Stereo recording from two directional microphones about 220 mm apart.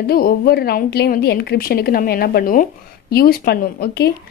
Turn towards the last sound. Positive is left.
turn(degrees=50)  # may be behind; listen again after turning